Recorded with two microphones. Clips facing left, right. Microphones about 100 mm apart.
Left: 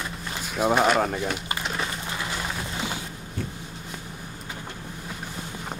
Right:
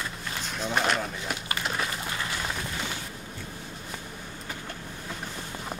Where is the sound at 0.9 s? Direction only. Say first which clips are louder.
Left 8 dB; 55° left (ahead or behind).